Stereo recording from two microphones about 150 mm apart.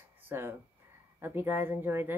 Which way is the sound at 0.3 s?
15° right (ahead or behind).